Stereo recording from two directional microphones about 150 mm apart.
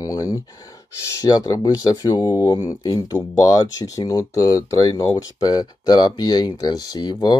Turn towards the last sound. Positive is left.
turn(degrees=30)  # may be behind; listen again after turning